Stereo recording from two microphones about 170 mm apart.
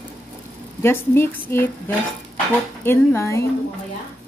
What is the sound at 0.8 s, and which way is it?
Speech, 15° left (ahead or behind).